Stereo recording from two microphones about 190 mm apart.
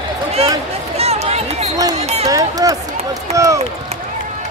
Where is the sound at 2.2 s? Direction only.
20° right (ahead or behind).